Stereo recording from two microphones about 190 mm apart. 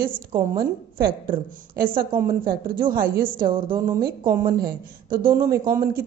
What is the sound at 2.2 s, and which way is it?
A woman's voice, 50° right (ahead or behind).